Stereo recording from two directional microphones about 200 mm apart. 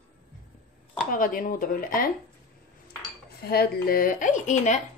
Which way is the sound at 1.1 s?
45° left (ahead or behind).